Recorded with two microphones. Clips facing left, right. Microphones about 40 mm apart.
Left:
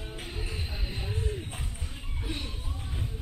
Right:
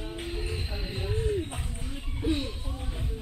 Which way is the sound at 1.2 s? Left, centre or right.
Centre.